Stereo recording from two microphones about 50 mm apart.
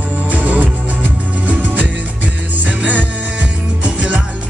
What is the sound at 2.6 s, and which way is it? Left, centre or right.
Music, right.